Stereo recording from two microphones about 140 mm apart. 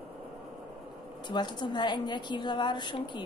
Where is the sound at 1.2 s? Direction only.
30° left (ahead or behind).